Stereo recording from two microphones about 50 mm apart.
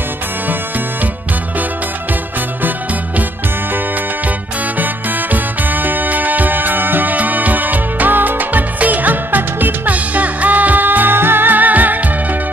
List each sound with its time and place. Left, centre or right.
4.7 s music: right